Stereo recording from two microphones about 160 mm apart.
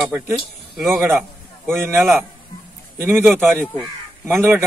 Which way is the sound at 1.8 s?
15° right (ahead or behind).